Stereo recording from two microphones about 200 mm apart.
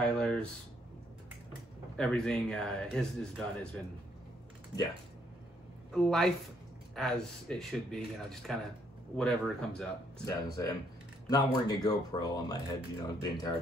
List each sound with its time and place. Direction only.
0.0 s a sound: 5° left (ahead or behind)
2.0 s speech: 5° left (ahead or behind)
5.9 s speech: 5° left (ahead or behind)
10.2 s speech: 15° left (ahead or behind)